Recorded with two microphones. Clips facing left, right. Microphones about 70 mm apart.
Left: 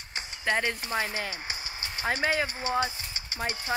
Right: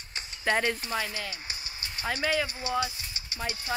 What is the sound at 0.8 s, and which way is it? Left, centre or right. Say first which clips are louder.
Speech: left 2 dB; left.